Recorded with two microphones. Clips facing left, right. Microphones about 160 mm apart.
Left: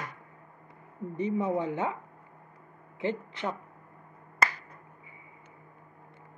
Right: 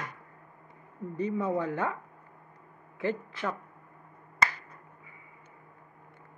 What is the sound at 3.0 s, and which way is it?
Speech, 20° left (ahead or behind).